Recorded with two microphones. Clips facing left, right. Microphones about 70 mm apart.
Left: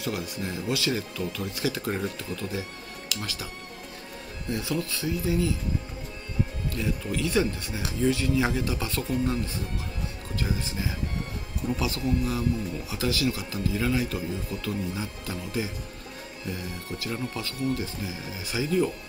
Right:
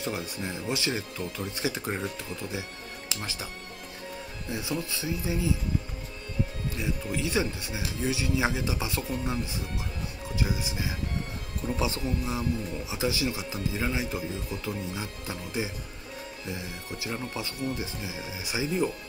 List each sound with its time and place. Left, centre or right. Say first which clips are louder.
0.0 s speech: left 1 dB; right
3.1 s speech: left 2 dB; right
4.5 s speech: left 3 dB; centre
6.7 s speech: left 2 dB; centre